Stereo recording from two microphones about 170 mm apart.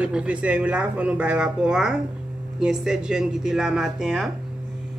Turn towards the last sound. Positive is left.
turn(degrees=0)  # may be behind; listen again after turning